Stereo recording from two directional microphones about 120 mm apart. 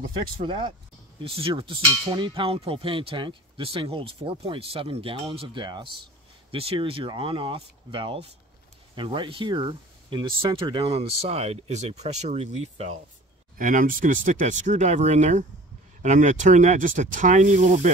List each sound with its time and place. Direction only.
0.4 s speech: 40° right (ahead or behind)
6.5 s speech: 50° right (ahead or behind); by 12.9 s 65° right (ahead or behind)
13.7 s speech: 90° right
16.0 s speech: 90° right